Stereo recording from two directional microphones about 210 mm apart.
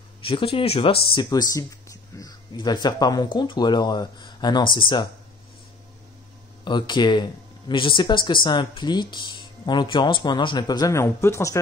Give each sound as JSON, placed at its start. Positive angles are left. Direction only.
{"t": 0.2, "sound": "speech", "side_deg": 25}
{"t": 6.6, "sound": "speech", "side_deg": 20}